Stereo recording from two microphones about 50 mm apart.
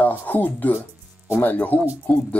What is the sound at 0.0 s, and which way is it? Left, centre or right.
Speech, left.